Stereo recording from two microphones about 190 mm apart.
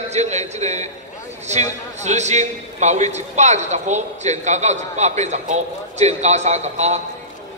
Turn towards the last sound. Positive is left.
turn(degrees=-35)  # may be behind; listen again after turning